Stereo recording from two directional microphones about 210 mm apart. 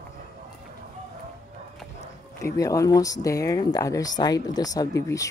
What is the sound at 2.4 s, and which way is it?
Speech, 15° left (ahead or behind).